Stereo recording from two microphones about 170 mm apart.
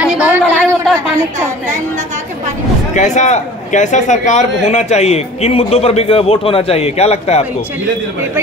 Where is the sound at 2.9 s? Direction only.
45° left (ahead or behind).